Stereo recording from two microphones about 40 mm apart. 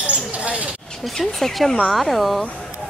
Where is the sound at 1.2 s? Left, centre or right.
Centre.